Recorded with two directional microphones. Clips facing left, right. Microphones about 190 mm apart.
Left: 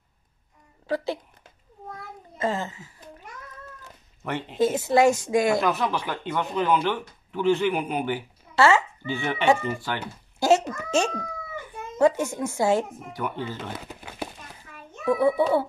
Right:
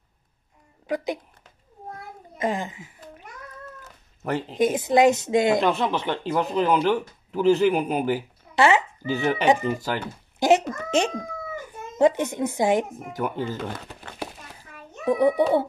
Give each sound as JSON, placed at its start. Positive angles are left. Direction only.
{"t": 0.8, "sound": "speech", "side_deg": -15}
{"t": 2.3, "sound": "speech", "side_deg": -15}
{"t": 4.2, "sound": "speech", "side_deg": -40}
{"t": 4.6, "sound": "a woman's voice", "side_deg": -15}
{"t": 8.5, "sound": "speech", "side_deg": -20}
{"t": 9.0, "sound": "speech", "side_deg": -40}
{"t": 9.9, "sound": "a woman's voice", "side_deg": -20}
{"t": 13.1, "sound": "speech", "side_deg": -45}
{"t": 13.7, "sound": "speech", "side_deg": 5}
{"t": 15.0, "sound": "a woman's voice", "side_deg": -20}